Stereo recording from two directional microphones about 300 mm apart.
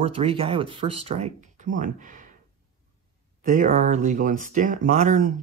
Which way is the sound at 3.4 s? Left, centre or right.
Right.